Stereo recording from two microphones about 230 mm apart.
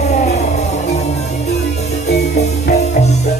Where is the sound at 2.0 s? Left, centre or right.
Left.